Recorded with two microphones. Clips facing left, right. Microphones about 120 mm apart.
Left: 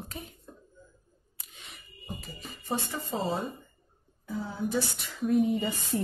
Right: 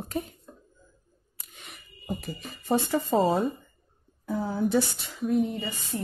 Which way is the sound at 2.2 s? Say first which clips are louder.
Right 6 dB; 70° right (ahead or behind).